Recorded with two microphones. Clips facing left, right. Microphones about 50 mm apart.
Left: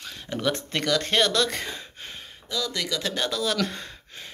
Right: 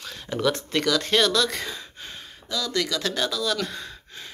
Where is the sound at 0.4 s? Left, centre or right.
Left.